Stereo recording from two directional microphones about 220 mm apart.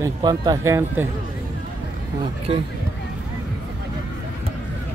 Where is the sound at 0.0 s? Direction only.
20° right (ahead or behind).